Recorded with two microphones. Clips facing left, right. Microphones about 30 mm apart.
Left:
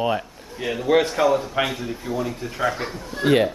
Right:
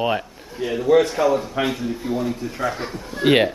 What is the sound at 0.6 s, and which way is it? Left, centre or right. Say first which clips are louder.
Speech: right 3 dB; centre.